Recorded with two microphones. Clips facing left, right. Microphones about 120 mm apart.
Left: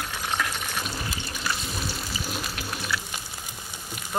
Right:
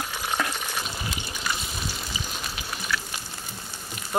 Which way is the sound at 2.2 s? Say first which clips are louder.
Left 2 dB; 5° left (ahead or behind).